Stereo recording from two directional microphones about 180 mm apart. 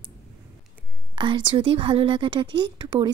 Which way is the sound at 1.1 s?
25° right (ahead or behind).